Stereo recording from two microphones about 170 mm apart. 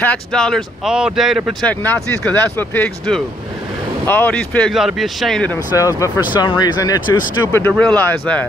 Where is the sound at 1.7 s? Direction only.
10° left (ahead or behind).